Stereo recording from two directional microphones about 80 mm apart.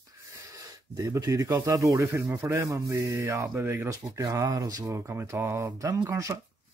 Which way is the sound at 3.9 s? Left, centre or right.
Right.